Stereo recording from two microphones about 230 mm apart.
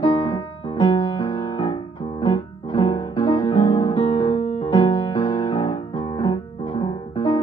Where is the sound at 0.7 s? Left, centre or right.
Left.